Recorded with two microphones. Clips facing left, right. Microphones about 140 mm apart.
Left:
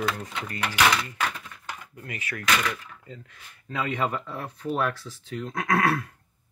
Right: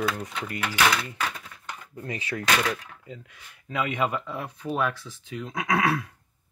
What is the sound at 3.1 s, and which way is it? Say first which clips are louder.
Speech: right 4 dB; 10° right (ahead or behind).